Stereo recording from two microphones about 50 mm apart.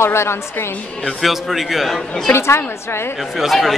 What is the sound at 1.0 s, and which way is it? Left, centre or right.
Speech, centre.